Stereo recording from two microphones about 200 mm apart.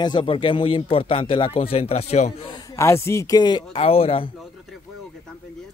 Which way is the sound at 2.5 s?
15° left (ahead or behind).